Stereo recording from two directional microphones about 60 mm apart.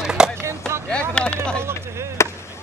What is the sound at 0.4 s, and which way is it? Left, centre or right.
Skateboard, right.